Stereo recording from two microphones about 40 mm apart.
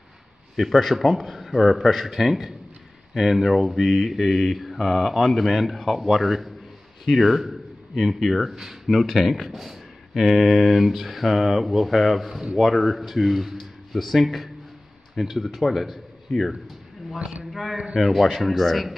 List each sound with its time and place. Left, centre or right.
0.6 s a man's voice: centre
17.2 s a man's voice: right
17.5 s speech: centre